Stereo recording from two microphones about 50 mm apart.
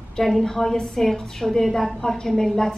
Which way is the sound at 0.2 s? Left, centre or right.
Centre.